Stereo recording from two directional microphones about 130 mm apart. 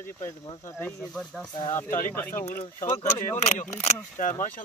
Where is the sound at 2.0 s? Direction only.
15° left (ahead or behind).